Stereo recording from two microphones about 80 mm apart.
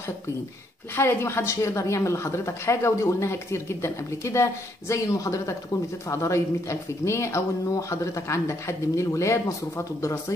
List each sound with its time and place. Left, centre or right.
0.9 s a woman's voice: left